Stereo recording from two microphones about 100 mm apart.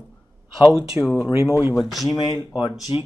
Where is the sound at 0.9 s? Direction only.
5° right (ahead or behind).